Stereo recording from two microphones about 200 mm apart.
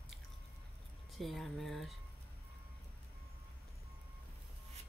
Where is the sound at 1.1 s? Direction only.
Centre (ahead or behind).